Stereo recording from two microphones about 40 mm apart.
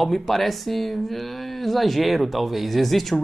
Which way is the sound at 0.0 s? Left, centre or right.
Centre.